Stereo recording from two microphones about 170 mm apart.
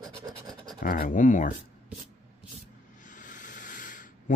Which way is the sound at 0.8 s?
55° left (ahead or behind).